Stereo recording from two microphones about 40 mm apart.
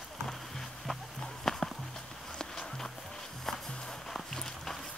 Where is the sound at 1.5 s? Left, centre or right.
Centre.